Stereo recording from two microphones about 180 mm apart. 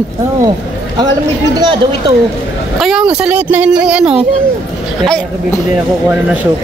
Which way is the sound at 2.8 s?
Centre (ahead or behind).